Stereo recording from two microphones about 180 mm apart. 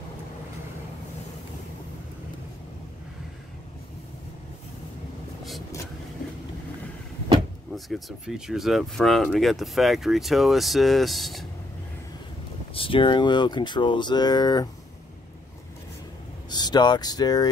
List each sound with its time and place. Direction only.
8.5 s speech: centre (ahead or behind)
12.7 s speech: 30° left (ahead or behind)
16.4 s speech: 25° left (ahead or behind)